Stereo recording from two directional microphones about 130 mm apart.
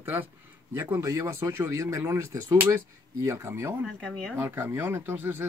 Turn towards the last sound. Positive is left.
turn(degrees=-15)  # may be behind; listen again after turning